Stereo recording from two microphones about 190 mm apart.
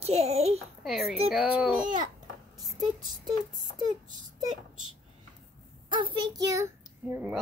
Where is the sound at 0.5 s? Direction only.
Centre (ahead or behind).